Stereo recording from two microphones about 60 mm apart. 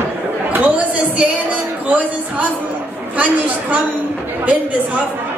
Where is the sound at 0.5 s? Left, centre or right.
Right.